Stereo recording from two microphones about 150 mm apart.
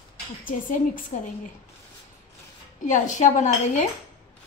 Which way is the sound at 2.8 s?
55° left (ahead or behind).